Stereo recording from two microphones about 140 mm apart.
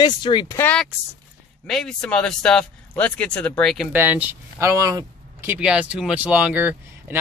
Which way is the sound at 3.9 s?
15° right (ahead or behind).